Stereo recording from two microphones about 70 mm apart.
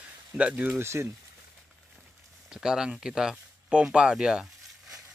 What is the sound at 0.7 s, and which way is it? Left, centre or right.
Speech, right.